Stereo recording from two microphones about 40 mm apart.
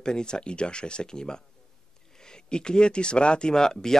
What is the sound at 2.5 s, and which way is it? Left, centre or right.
Speech, left.